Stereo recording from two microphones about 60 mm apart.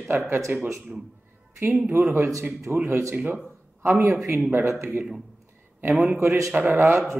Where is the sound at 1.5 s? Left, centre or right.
Right.